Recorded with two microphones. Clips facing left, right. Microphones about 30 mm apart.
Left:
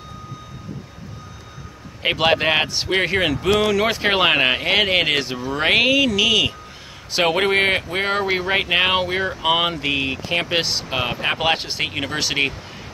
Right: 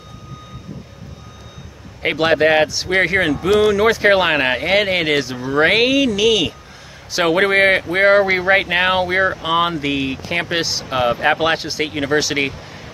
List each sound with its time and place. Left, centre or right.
2.0 s speech: centre
3.3 s speech: centre
3.9 s speech: centre
5.4 s a man's voice: centre
7.3 s speech: centre
9.4 s speech: centre
10.6 s speech: centre